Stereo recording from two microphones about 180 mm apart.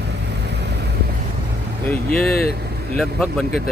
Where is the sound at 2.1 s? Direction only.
55° left (ahead or behind).